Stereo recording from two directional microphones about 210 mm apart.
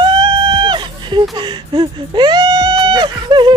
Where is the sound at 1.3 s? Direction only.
20° right (ahead or behind).